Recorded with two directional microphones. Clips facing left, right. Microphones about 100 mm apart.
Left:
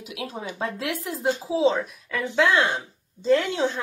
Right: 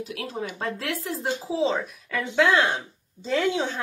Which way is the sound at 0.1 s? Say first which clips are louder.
Right 1 dB; 15° left (ahead or behind).